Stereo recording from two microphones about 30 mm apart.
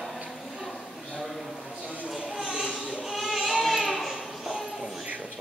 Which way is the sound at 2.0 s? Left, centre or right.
Centre.